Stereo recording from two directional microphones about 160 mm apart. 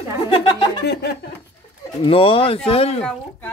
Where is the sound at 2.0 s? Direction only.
35° left (ahead or behind).